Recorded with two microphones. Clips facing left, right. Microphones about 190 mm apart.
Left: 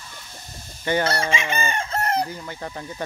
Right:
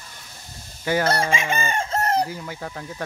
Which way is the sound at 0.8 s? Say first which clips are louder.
Even; 5° right (ahead or behind).